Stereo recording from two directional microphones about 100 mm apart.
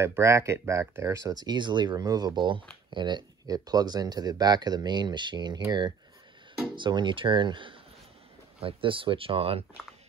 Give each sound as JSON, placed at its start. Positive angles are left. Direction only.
{"t": 0.0, "sound": "speech", "side_deg": -30}
{"t": 8.5, "sound": "speech", "side_deg": -65}